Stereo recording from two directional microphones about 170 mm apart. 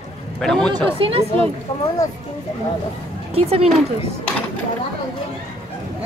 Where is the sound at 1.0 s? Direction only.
35° right (ahead or behind).